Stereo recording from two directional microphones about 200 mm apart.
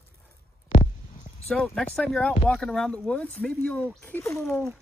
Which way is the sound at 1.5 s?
5° left (ahead or behind).